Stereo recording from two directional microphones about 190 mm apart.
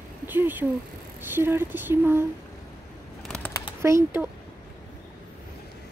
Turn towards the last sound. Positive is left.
turn(degrees=-15)  # may be behind; listen again after turning